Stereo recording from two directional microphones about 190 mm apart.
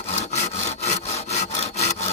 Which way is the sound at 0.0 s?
35° left (ahead or behind).